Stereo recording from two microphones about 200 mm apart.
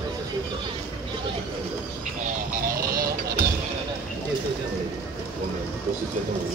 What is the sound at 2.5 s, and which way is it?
Vehicle, 45° right (ahead or behind).